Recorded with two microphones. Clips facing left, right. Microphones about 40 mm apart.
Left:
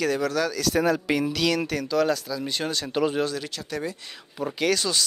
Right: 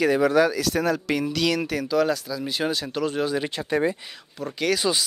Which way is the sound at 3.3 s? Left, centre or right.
Right.